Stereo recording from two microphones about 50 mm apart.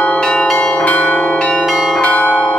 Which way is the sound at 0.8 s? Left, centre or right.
Left.